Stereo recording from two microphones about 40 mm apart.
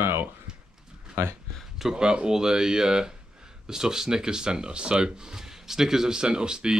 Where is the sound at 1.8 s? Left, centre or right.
Centre.